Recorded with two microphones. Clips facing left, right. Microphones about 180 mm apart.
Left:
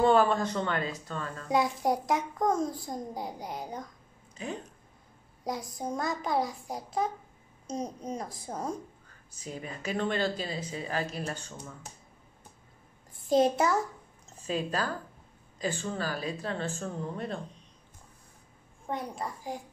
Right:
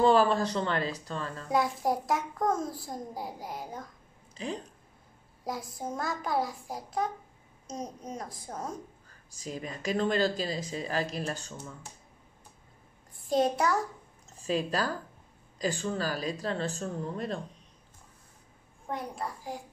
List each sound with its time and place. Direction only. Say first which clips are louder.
0.0 s speech: even; 35° right (ahead or behind)
1.5 s a child's voice: left 1 dB; centre (ahead or behind)
4.4 s speech: right 1 dB; 30° right (ahead or behind)
5.4 s a child's voice: left 1 dB; centre (ahead or behind)
9.4 s speech: right 2 dB; 35° right (ahead or behind)
13.3 s a child's voice: left 2 dB; centre (ahead or behind)
14.4 s speech: right 2 dB; 35° right (ahead or behind)